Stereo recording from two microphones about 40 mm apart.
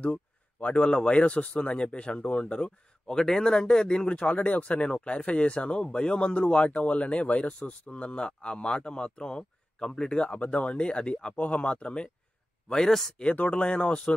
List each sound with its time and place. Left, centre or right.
0.0 s a sound: left
0.8 s speech: left
3.1 s speech: centre
4.1 s speech: left
11.3 s speech: left
12.6 s speech: centre
13.2 s speech: left